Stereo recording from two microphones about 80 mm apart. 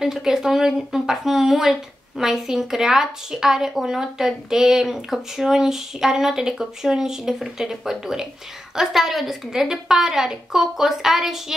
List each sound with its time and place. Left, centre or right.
0.0 s speech: centre